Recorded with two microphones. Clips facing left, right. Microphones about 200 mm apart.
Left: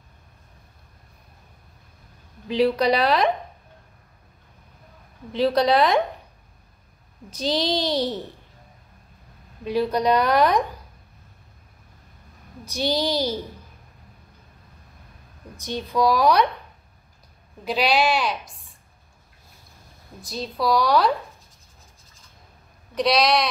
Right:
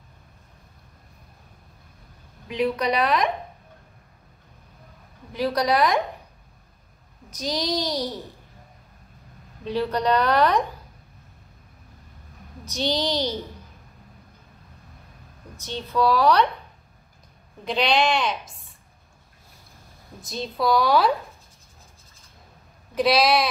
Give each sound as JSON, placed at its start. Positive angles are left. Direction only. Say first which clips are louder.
{"t": 2.4, "sound": "a woman's voice", "louder": "left 4 dB", "side_deg": 30}
{"t": 5.3, "sound": "a child's voice", "louder": "left 4 dB", "side_deg": 25}
{"t": 7.2, "sound": "a child's voice", "louder": "left 3 dB", "side_deg": 30}
{"t": 9.7, "sound": "a woman's voice", "louder": "left 2 dB", "side_deg": 10}
{"t": 12.6, "sound": "a woman's voice", "louder": "left 1 dB", "side_deg": 10}
{"t": 15.6, "sound": "a woman's voice", "louder": "left 1 dB", "side_deg": 15}
{"t": 17.6, "sound": "speech", "louder": "left 1 dB", "side_deg": 5}
{"t": 20.2, "sound": "speech", "louder": "even", "side_deg": 0}
{"t": 22.9, "sound": "speech", "louder": "even", "side_deg": -5}